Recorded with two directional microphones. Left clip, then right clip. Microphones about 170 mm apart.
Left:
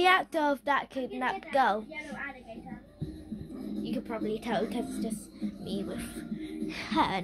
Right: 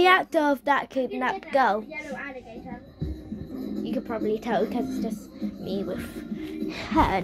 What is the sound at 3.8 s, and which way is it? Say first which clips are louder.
A woman's voice: right 5 dB; 20° left (ahead or behind).